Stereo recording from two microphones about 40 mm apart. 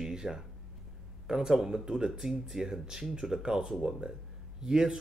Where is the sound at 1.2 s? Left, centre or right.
Centre.